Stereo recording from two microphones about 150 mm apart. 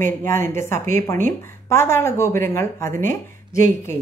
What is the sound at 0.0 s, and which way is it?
A woman's voice, 15° left (ahead or behind).